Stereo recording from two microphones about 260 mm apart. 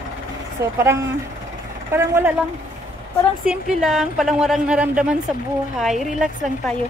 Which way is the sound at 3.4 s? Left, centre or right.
Centre.